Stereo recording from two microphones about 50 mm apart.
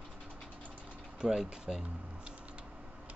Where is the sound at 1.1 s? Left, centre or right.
Centre.